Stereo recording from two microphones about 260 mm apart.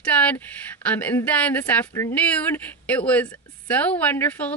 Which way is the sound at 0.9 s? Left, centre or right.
Centre.